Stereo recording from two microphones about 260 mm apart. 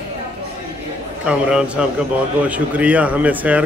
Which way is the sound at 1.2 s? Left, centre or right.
Centre.